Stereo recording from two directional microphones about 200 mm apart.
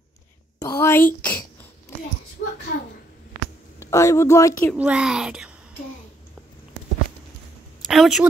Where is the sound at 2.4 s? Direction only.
50° left (ahead or behind).